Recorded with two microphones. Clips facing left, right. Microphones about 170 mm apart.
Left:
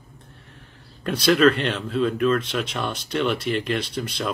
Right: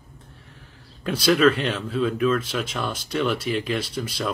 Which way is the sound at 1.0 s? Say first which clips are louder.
Left 1 dB; 5° right (ahead or behind).